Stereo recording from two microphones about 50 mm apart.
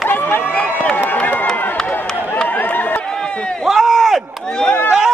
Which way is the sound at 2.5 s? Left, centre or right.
Left.